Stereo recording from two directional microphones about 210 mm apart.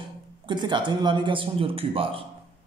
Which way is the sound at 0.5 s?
20° right (ahead or behind).